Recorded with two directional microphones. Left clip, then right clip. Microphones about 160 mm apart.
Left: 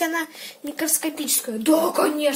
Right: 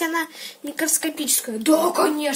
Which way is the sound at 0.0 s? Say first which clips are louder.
Even; 10° left (ahead or behind).